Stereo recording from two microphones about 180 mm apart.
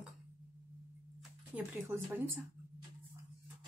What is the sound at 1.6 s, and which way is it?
Speech, 10° right (ahead or behind).